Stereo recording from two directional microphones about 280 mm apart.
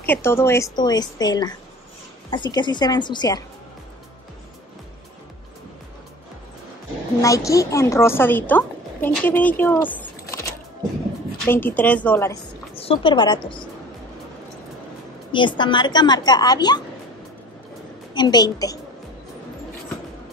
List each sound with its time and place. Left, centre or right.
0.0 s a woman's voice: centre
7.2 s a woman's voice: centre
12.7 s a woman's voice: centre
15.3 s a woman's voice: centre
18.1 s a woman's voice: centre